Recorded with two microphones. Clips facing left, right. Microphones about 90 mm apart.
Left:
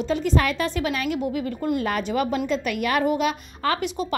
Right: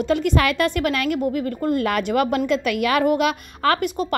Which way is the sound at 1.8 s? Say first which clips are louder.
Right 4 dB; 75° right (ahead or behind).